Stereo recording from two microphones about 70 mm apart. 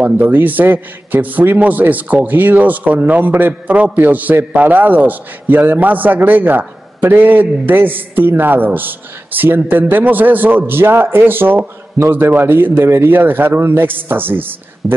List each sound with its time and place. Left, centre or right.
0.0 s a man's voice: right
14.8 s speech: centre